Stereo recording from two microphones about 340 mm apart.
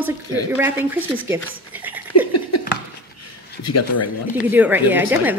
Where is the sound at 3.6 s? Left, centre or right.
Left.